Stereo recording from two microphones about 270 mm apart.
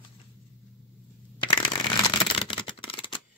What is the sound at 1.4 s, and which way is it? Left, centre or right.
Shuffling cards, centre.